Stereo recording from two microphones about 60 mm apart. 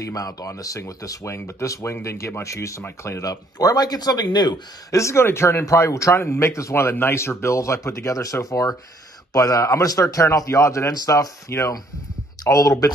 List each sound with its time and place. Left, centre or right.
0.0 s a man's voice: left
0.7 s speech: left
3.3 s a man's voice: left
4.9 s speech: left
6.1 s a man's voice: left
11.5 s a man's voice: left